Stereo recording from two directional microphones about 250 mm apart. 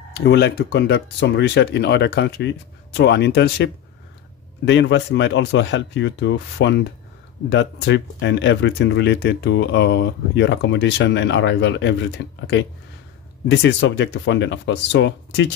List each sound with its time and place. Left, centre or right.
0.2 s speech: left